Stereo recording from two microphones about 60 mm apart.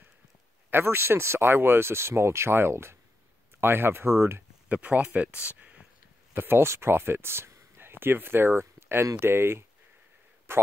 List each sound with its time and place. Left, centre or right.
0.7 s speech: right
4.6 s speech: right
6.3 s speech: right